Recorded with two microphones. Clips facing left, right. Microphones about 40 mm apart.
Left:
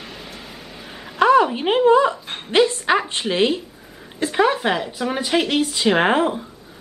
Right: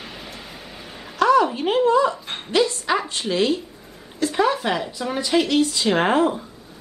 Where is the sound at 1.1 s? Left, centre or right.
Left.